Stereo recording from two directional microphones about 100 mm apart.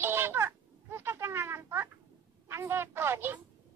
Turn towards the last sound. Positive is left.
turn(degrees=-20)  # may be behind; listen again after turning